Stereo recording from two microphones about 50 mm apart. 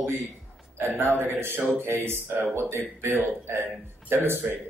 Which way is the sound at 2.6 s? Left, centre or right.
Right.